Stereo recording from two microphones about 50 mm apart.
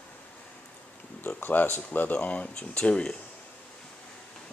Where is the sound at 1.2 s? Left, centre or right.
Left; by 3.2 s centre.